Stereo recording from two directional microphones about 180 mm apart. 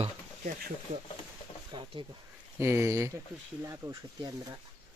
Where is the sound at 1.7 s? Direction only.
25° right (ahead or behind).